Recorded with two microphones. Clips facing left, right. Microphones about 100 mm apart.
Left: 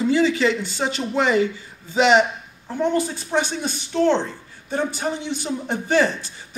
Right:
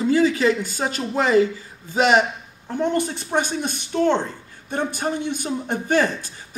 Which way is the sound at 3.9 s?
15° right (ahead or behind).